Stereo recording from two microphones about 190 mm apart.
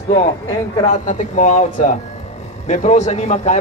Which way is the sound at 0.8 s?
40° left (ahead or behind).